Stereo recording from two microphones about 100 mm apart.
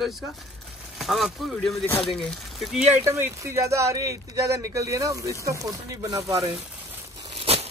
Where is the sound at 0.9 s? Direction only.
Centre (ahead or behind).